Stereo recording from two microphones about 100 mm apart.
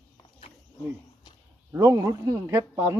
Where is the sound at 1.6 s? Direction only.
35° right (ahead or behind).